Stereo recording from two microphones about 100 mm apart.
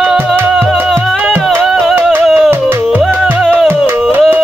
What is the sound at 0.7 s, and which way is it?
Music, 20° right (ahead or behind).